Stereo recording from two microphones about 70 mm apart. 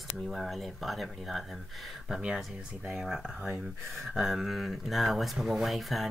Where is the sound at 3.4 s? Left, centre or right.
Centre.